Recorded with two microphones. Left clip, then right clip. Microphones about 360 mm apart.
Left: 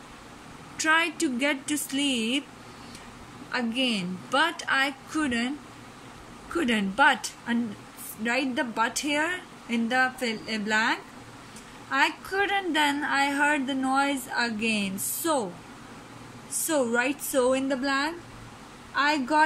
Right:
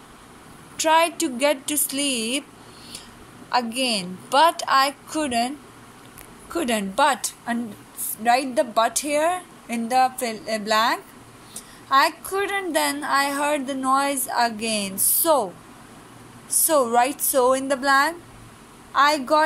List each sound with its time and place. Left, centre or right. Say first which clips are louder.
0.7 s a woman's voice: right 5 dB; centre
3.5 s a woman's voice: right 5 dB; centre
6.5 s a woman's voice: right 3 dB; centre
16.4 s a sound: right 7 dB; centre
16.9 s a woman's voice: right 6 dB; centre